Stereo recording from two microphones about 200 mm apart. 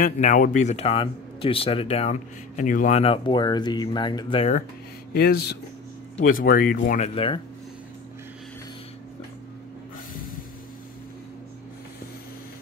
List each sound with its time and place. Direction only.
0.0 s speech: 40° left (ahead or behind); by 4.5 s 25° left (ahead or behind)
5.1 s speech: 50° left (ahead or behind)
7.2 s speech: 25° left (ahead or behind)